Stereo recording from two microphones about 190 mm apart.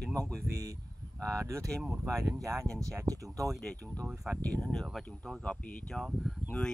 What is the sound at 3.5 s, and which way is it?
Speech, centre (ahead or behind).